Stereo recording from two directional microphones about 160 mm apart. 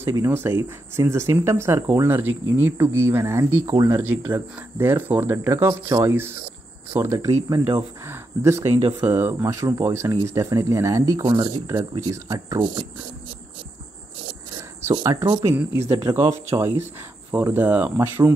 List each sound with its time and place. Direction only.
0.0 s speech: 15° right (ahead or behind)
11.2 s speech: 30° right (ahead or behind)
14.8 s speech: 15° right (ahead or behind)